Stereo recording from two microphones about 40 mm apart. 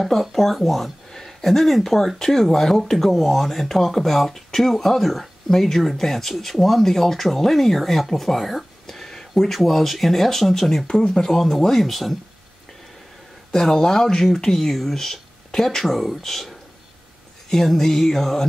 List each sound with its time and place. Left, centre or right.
0.0 s speech: centre
13.5 s speech: centre